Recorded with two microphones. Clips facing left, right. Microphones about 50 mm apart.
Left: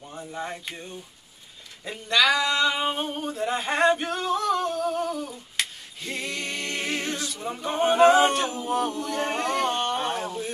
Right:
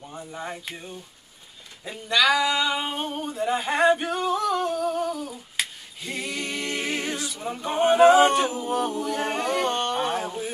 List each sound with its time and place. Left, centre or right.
0.0 s a sound: centre
1.9 s singing: centre
5.6 s a capella: centre